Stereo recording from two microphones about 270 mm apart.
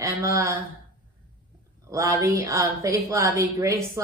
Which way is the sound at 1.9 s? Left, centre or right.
Centre.